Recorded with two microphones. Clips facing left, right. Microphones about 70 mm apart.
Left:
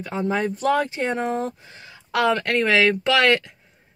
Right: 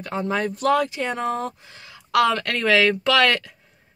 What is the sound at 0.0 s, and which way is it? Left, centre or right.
Speech, centre.